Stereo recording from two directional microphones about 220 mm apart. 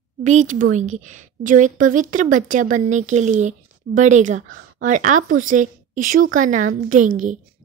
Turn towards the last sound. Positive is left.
turn(degrees=-35)  # may be behind; listen again after turning